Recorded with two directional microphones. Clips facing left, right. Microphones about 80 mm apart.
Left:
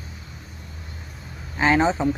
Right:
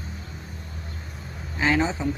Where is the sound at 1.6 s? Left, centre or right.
Left.